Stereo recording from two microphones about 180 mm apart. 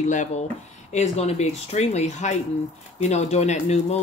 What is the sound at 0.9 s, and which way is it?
Speech, 35° left (ahead or behind).